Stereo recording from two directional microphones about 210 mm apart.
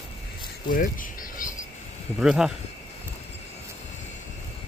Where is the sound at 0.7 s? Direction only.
40° left (ahead or behind).